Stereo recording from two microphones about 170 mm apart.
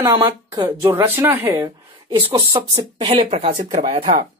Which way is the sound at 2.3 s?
30° right (ahead or behind).